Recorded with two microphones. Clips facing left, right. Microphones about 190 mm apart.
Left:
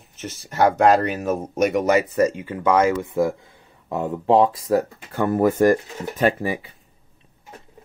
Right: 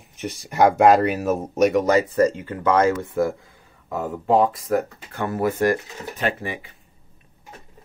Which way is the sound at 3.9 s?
30° left (ahead or behind).